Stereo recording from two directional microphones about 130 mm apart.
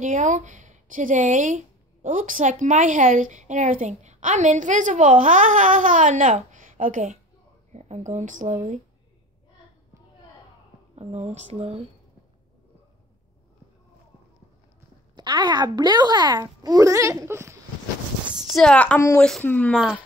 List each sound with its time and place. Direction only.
0.0 s speech: 70° right (ahead or behind)
2.0 s a woman's voice: 90° right; by 6.3 s 75° right (ahead or behind)
6.5 s a sound: 85° right
7.7 s a woman's voice: 60° right (ahead or behind)
11.0 s speech: 55° right (ahead or behind)
15.1 s speech: 35° right (ahead or behind)
18.5 s a woman's voice: 5° left (ahead or behind)
19.7 s speech: centre (ahead or behind)